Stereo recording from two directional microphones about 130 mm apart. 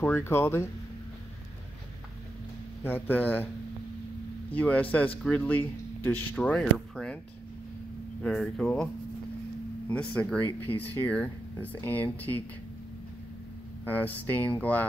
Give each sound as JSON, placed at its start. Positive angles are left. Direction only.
{"t": 0.0, "sound": "speech", "side_deg": 15}
{"t": 2.8, "sound": "speech", "side_deg": 15}
{"t": 4.5, "sound": "speech", "side_deg": 10}
{"t": 8.2, "sound": "speech", "side_deg": 5}
{"t": 13.8, "sound": "speech", "side_deg": 15}